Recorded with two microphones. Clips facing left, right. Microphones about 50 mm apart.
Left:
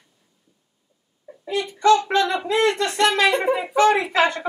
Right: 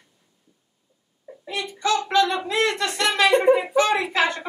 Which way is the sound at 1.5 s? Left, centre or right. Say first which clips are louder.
Left 7 dB; left.